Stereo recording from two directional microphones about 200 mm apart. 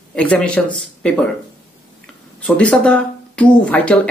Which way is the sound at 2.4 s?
5° left (ahead or behind).